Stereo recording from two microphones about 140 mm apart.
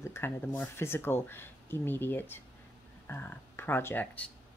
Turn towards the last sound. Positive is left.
turn(degrees=10)  # may be behind; listen again after turning